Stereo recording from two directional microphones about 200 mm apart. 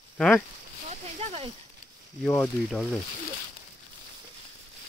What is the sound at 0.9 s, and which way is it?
Speech, 30° right (ahead or behind).